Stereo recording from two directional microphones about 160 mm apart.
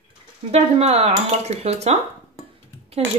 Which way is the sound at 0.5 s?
40° right (ahead or behind).